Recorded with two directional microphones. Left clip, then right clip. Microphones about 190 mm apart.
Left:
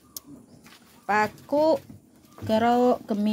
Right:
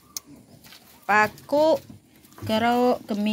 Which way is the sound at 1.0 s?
10° left (ahead or behind).